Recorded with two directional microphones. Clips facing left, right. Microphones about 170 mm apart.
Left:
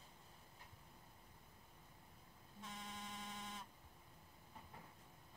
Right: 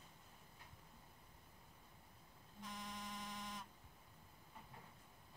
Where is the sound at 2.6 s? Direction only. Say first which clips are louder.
Right 2 dB; 25° left (ahead or behind).